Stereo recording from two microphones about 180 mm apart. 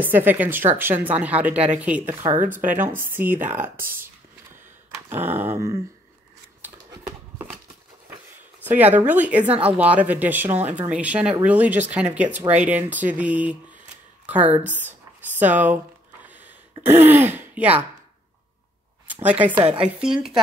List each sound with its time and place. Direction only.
0.0 s speech: 10° right (ahead or behind)
5.1 s speech: 10° right (ahead or behind)
6.9 s horse: 20° right (ahead or behind)
8.6 s speech: 10° right (ahead or behind)
14.8 s a sound: 10° right (ahead or behind)
16.8 s speech: 10° right (ahead or behind)
19.0 s speech: 10° right (ahead or behind)